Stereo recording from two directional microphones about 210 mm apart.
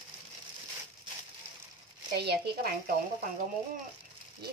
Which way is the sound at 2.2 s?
50° right (ahead or behind).